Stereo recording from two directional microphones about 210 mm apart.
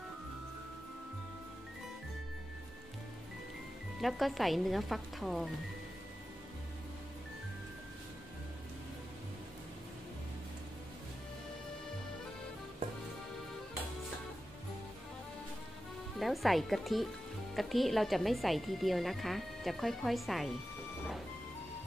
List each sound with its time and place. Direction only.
4.0 s a woman's voice: centre (ahead or behind)
16.2 s a woman's voice: centre (ahead or behind)